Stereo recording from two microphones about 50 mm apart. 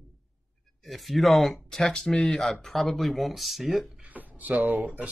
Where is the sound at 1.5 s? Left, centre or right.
Centre.